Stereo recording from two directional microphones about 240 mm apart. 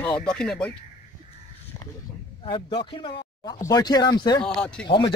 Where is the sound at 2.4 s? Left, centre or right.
Left.